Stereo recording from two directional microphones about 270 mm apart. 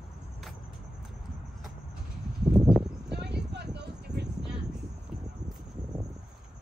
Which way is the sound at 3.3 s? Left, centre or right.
Right.